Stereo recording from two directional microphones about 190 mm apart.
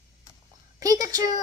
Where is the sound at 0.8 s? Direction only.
20° right (ahead or behind).